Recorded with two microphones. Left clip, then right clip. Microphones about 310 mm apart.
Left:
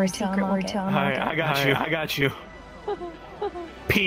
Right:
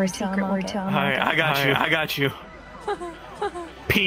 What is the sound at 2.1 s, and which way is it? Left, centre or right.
Speech, centre.